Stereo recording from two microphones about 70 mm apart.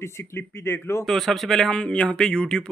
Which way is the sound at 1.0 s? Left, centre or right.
Centre.